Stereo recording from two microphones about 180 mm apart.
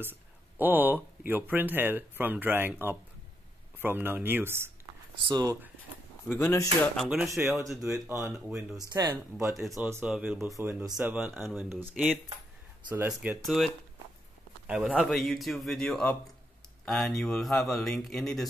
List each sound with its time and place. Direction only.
0.0 s speech: 10° right (ahead or behind)
6.3 s speech: 15° left (ahead or behind)
7.0 s speech: centre (ahead or behind)
7.2 s speech: 15° right (ahead or behind)
9.6 s speech: centre (ahead or behind)
14.7 s speech: 5° right (ahead or behind)